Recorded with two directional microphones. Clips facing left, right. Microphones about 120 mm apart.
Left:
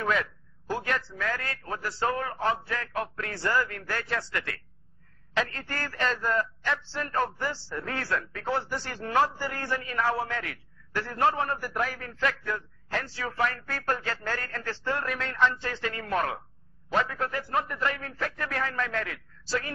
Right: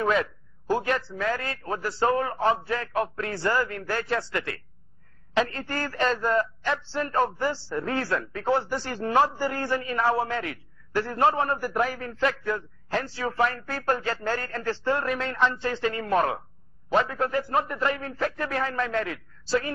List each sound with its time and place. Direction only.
0.0 s a man's voice: 25° right (ahead or behind)